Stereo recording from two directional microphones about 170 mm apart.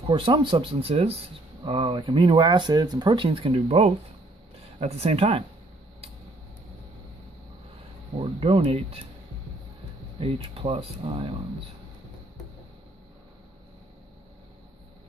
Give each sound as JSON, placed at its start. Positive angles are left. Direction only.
{"t": 0.0, "sound": "speech", "side_deg": -30}
{"t": 8.2, "sound": "speech", "side_deg": -35}
{"t": 10.2, "sound": "speech", "side_deg": -35}